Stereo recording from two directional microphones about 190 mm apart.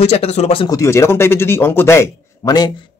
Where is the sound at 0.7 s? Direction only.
15° left (ahead or behind).